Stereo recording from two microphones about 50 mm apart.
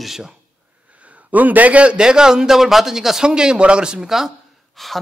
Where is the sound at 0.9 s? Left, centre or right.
Right.